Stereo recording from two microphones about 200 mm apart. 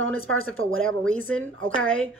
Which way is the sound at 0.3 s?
90° right.